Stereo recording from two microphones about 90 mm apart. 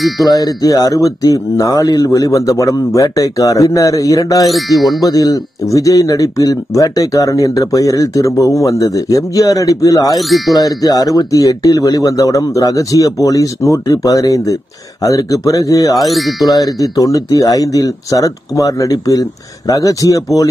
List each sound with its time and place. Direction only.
0.2 s speech: 45° left (ahead or behind)
4.5 s speech: centre (ahead or behind)
5.0 s speech: 45° left (ahead or behind)
10.1 s speech: centre (ahead or behind)
10.5 s speech: 45° left (ahead or behind)
16.0 s speech: centre (ahead or behind)
16.4 s speech: 45° left (ahead or behind)